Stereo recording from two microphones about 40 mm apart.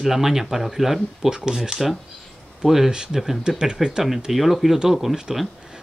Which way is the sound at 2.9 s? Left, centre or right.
Centre.